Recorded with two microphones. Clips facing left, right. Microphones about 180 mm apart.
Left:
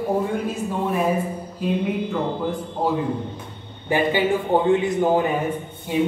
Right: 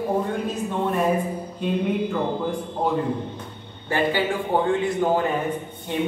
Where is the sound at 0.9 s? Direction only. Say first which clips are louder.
Even; centre (ahead or behind).